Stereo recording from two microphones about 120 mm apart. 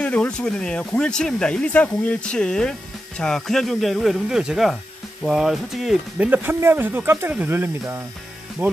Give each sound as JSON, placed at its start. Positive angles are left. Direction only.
{"t": 0.0, "sound": "speech", "side_deg": 10}
{"t": 6.1, "sound": "speech", "side_deg": -15}